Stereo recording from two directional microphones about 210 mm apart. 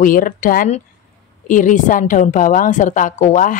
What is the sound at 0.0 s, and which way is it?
A woman's voice, 40° left (ahead or behind).